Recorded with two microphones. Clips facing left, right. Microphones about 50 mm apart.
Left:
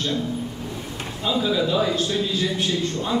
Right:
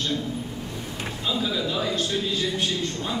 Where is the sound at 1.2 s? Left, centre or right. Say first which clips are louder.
Left 5 dB; centre.